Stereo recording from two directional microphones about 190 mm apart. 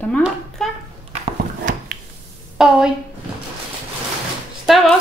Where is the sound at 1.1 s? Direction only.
40° right (ahead or behind).